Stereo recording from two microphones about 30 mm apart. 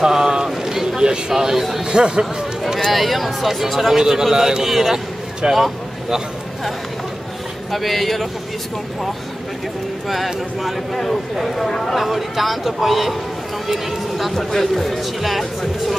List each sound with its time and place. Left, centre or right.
0.0 s a sound: centre
1.3 s a man's voice: centre
1.9 s a man's voice: right
2.8 s speech: centre
3.9 s a man's voice: centre
4.6 s a man's voice: centre
7.7 s speech: centre
10.0 s speech: centre
14.3 s speech: centre